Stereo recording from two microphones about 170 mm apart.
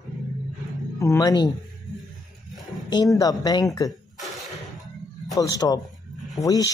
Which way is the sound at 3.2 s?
20° left (ahead or behind).